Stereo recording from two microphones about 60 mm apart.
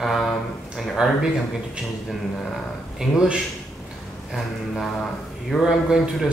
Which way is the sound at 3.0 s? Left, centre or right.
Centre.